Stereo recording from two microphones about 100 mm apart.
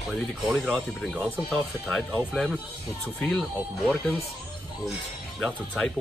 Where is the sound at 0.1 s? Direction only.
Centre (ahead or behind).